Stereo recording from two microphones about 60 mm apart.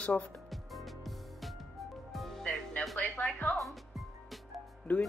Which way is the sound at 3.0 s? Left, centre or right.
Left.